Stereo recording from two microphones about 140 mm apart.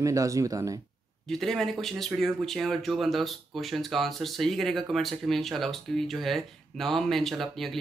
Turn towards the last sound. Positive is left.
turn(degrees=0)  # may be behind; listen again after turning